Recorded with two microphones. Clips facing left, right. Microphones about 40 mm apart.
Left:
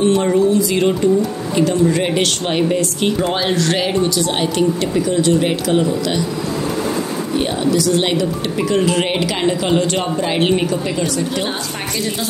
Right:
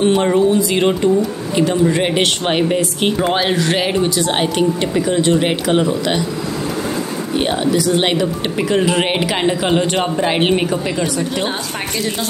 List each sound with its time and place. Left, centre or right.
0.2 s speech: right
7.4 s speech: right